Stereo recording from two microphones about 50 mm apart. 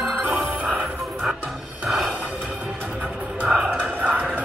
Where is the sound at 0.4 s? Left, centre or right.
Right.